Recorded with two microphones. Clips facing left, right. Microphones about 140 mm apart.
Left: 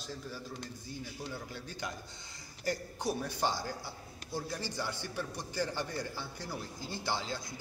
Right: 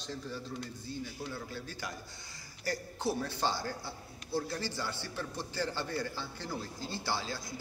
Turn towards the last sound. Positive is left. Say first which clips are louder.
# even
turn(degrees=20)  # may be behind; listen again after turning